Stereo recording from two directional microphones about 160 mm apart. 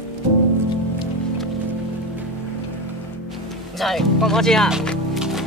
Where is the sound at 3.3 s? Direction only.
Centre (ahead or behind).